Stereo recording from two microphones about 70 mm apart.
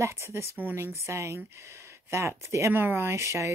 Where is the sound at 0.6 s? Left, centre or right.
Right.